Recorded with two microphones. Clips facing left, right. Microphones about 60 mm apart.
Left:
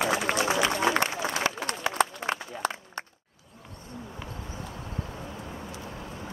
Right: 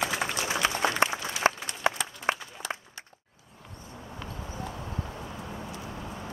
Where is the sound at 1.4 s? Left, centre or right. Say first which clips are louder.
Right 9 dB; right.